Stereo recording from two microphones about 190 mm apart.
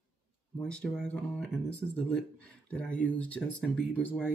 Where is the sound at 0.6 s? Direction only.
5° left (ahead or behind).